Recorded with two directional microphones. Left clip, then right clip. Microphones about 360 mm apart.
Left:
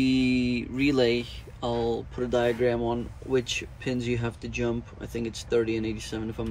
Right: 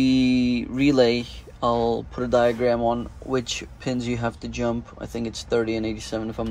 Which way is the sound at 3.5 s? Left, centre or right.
Right.